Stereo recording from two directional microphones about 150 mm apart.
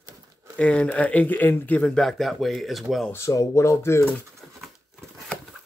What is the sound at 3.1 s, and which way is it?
Speech, 20° left (ahead or behind).